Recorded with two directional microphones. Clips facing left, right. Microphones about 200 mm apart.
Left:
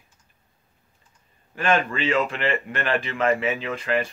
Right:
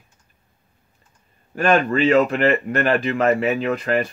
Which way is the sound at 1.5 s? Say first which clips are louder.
Right 5 dB; 45° right (ahead or behind).